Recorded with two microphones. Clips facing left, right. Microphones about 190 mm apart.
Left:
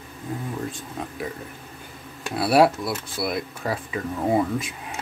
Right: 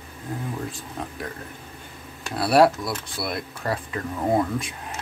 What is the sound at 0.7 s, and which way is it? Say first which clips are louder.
Speech: left 1 dB; centre (ahead or behind).